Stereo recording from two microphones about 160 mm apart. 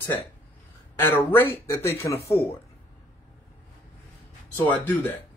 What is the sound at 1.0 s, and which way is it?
Speech, 10° left (ahead or behind).